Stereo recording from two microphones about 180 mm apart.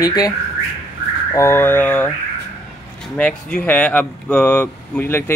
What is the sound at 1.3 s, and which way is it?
Speech, 15° left (ahead or behind).